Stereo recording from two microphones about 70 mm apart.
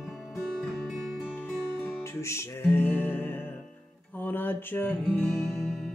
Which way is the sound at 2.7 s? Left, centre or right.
Left.